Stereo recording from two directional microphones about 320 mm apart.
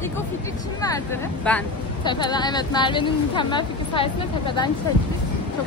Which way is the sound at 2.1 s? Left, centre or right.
Centre.